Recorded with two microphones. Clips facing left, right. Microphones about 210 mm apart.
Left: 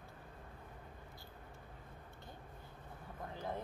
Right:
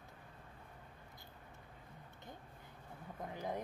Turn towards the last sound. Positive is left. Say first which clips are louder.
# right 1 dB
turn(degrees=-15)  # may be behind; listen again after turning